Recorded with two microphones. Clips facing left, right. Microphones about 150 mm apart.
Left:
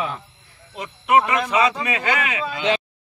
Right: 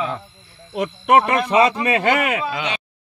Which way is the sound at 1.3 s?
40° right (ahead or behind).